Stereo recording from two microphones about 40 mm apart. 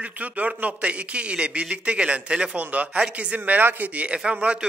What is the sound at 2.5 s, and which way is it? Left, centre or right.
A man's voice, right.